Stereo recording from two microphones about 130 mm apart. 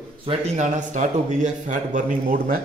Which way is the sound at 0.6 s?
70° right (ahead or behind).